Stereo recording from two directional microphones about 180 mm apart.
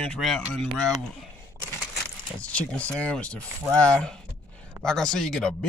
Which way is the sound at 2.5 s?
5° left (ahead or behind).